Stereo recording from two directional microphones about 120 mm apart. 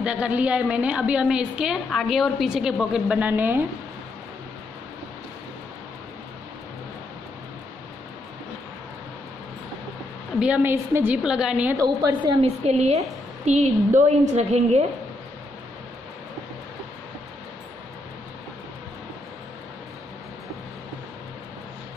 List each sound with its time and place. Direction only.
0.0 s a woman's voice: 10° right (ahead or behind)
10.4 s a woman's voice: 15° right (ahead or behind)
11.2 s a woman's voice: 5° right (ahead or behind)
11.7 s a woman's voice: 30° right (ahead or behind)
12.6 s a woman's voice: 60° right (ahead or behind)